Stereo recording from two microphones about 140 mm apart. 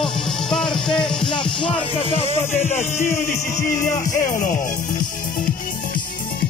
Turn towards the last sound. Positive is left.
turn(degrees=70)  # may be behind; listen again after turning